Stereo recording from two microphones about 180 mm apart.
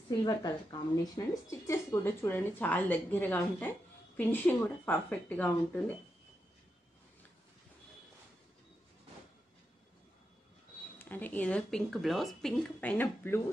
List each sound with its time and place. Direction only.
0.2 s a woman's voice: 25° left (ahead or behind)
11.0 s speech: 10° left (ahead or behind)